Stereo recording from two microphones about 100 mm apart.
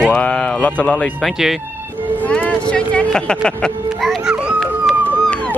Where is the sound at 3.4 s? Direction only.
10° left (ahead or behind).